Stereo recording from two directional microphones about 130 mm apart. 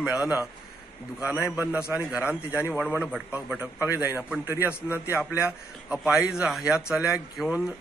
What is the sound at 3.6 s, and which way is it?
A man's voice, 15° right (ahead or behind).